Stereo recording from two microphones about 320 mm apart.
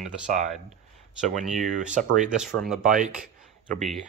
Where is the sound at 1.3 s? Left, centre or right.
Centre.